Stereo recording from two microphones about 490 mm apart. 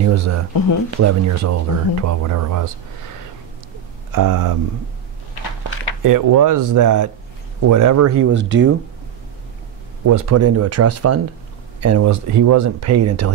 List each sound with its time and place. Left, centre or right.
0.0 s speech: right
4.1 s speech: right
6.0 s speech: right
10.0 s speech: right